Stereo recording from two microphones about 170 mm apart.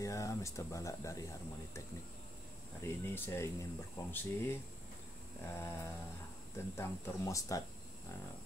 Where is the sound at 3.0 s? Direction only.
15° left (ahead or behind).